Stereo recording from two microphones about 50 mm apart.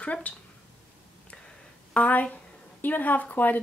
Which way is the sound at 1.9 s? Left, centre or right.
Left.